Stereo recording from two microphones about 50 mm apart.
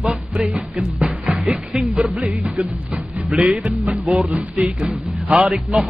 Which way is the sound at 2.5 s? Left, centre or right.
Centre.